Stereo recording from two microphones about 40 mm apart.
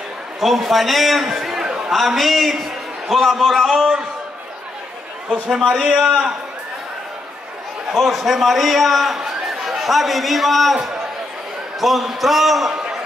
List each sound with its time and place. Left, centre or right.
0.4 s a man's voice: centre
1.2 s chatter: centre
2.0 s a man's voice: centre
5.9 s a man's voice: right
7.9 s a man's voice: centre
11.8 s a man's voice: centre